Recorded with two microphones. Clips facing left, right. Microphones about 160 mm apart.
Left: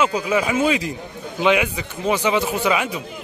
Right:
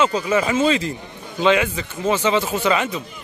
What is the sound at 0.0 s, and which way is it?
A man's voice, 10° left (ahead or behind).